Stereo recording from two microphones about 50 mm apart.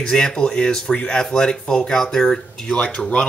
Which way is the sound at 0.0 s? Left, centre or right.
Centre.